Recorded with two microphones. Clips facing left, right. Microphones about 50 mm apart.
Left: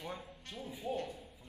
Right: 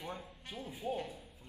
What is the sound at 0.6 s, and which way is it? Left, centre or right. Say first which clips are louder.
Speech: right 1 dB; right.